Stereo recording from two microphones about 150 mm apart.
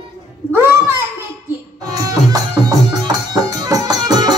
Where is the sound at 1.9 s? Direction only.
25° right (ahead or behind).